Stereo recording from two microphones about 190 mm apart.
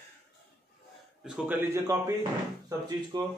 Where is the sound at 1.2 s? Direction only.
10° right (ahead or behind).